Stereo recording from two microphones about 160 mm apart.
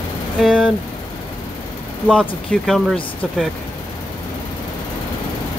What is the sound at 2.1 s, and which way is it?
Speech, 5° left (ahead or behind).